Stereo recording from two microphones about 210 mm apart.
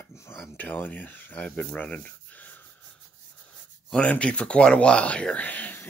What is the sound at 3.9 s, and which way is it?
Speech, 5° left (ahead or behind).